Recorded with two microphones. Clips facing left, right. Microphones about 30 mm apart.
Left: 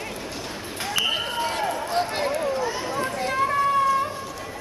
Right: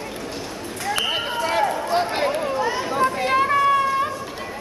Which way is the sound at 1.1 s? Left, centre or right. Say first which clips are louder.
Right 2 dB; centre.